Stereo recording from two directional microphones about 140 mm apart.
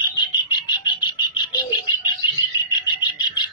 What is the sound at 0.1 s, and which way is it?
Frog, 30° left (ahead or behind).